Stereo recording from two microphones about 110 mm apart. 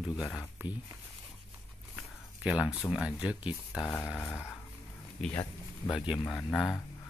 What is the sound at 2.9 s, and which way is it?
Speech, 10° right (ahead or behind).